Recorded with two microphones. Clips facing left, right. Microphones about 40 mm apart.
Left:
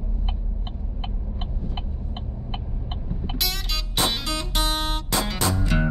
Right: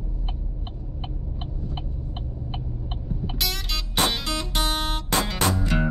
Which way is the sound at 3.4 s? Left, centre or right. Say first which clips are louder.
Even; centre.